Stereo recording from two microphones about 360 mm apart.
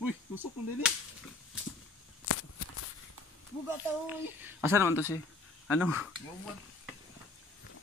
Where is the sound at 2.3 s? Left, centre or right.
Left.